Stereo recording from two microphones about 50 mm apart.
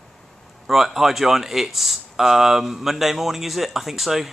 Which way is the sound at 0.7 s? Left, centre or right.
Centre.